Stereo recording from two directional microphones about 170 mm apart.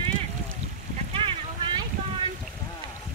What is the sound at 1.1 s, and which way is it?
Boat, 30° right (ahead or behind).